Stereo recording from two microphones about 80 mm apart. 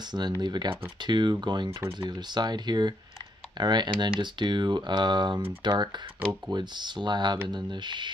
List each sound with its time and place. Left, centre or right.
0.4 s speech: right